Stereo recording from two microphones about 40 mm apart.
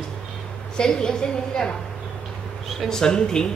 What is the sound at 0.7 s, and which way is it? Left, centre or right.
A woman's voice, centre.